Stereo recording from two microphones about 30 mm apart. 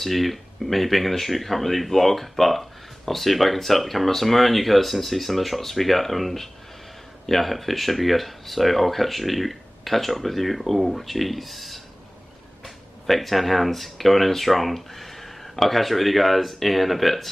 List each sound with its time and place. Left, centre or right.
0.0 s speech: centre